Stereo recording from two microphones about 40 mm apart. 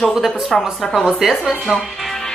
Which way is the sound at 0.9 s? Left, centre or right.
Centre.